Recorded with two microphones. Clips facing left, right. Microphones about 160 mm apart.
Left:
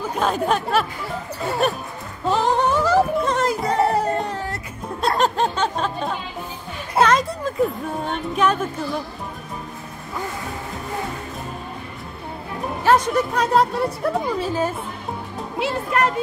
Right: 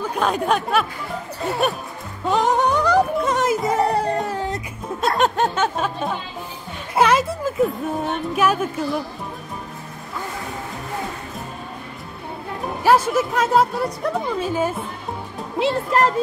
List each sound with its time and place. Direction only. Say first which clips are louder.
0.1 s speech: even; centre (ahead or behind)
2.2 s music: right 1 dB; centre (ahead or behind)
4.3 s music: right 3 dB; 15° right (ahead or behind)
4.8 s music: even; centre (ahead or behind)
7.0 s a woman's voice: right 1 dB; 10° right (ahead or behind)
12.8 s speech: right 1 dB; 5° right (ahead or behind)
15.6 s speech: right 3 dB; 30° right (ahead or behind)